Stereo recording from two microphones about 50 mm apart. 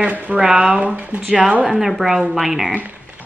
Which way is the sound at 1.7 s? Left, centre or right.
Centre.